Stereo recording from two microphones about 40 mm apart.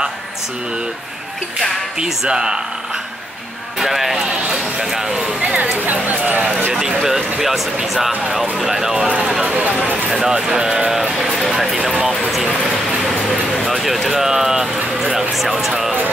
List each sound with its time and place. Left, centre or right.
2.2 s speech: centre
3.8 s speech: centre
5.2 s a sound: right
5.6 s speech: right
6.7 s speech: centre
9.4 s speech: right
10.1 s speech: centre
11.0 s speech: centre
11.5 s speech: centre
11.9 s speech: right
13.7 s speech: centre